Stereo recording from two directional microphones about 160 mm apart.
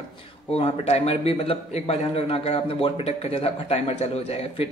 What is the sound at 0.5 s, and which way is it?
A man's voice, 40° left (ahead or behind).